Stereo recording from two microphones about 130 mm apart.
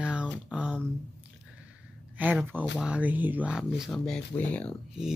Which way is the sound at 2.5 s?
10° right (ahead or behind).